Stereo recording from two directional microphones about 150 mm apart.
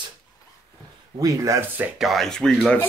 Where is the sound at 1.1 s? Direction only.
20° right (ahead or behind).